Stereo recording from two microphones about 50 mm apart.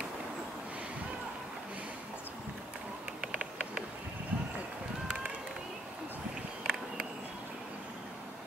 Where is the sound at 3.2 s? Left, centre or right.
Centre.